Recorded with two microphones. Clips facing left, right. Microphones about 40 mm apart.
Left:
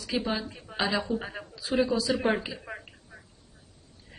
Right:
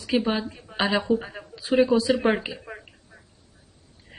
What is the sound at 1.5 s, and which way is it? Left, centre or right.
Speech, right.